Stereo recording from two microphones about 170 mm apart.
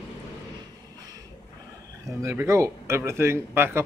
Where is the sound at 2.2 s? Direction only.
15° right (ahead or behind).